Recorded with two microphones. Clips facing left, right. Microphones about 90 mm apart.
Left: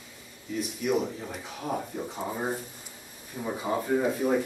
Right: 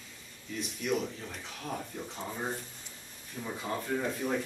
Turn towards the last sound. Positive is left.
turn(degrees=10)  # may be behind; listen again after turning